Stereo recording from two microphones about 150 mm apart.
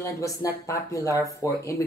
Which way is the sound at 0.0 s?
20° left (ahead or behind).